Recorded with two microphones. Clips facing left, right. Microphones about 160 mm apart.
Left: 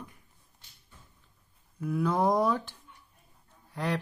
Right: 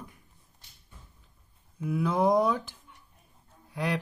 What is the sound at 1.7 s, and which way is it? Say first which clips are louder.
Mantra: even; 10° right (ahead or behind).